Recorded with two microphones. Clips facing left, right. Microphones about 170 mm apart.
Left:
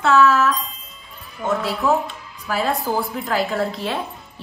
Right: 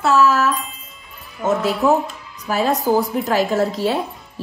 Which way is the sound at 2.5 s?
40° right (ahead or behind).